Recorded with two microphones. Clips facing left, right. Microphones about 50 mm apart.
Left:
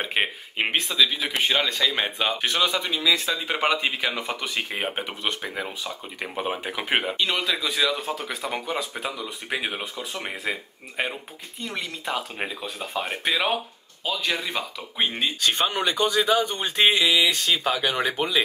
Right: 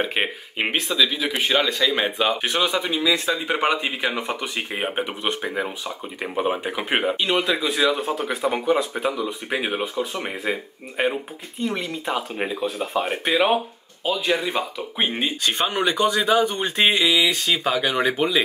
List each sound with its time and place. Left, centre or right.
0.0 s speech: centre
2.4 s speech: centre